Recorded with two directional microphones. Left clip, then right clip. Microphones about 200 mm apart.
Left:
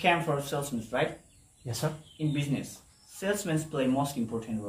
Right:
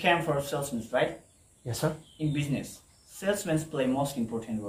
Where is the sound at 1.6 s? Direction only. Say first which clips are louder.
Right 3 dB; 30° right (ahead or behind).